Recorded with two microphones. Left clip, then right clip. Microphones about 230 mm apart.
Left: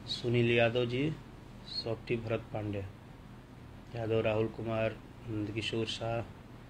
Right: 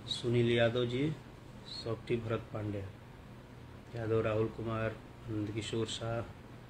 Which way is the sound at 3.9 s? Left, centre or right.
Centre.